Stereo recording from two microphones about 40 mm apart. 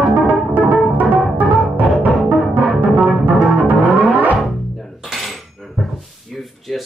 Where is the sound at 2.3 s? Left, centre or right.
Right.